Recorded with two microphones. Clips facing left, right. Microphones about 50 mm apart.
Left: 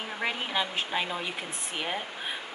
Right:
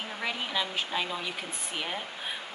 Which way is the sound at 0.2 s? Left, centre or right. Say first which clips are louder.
Left 2 dB; left.